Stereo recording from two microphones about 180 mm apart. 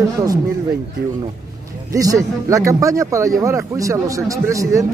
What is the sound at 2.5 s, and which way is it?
A man's voice, 20° right (ahead or behind).